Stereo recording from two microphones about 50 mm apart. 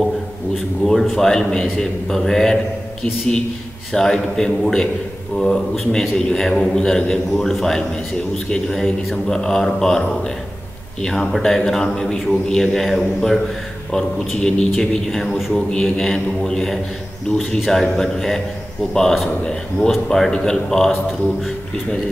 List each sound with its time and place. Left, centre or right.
1.1 s a man's voice: centre
15.3 s a man's voice: centre
15.7 s a man's voice: centre